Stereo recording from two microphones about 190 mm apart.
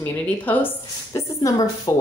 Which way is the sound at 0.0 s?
10° left (ahead or behind).